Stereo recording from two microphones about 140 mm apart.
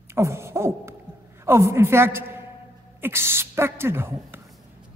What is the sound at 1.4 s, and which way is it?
A woman's voice, 20° right (ahead or behind).